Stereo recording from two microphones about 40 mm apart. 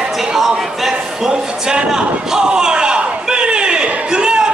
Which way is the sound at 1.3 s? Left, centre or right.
Right.